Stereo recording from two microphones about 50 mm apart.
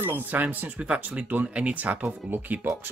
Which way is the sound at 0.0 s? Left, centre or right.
Right.